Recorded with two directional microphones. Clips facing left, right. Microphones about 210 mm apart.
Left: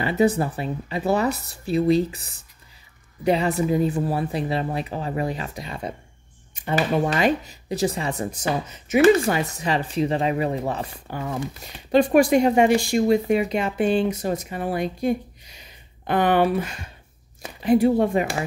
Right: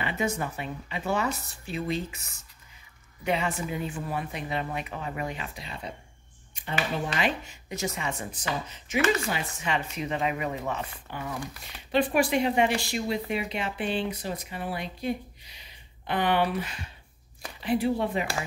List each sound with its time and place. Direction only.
0.0 s speech: 35° left (ahead or behind)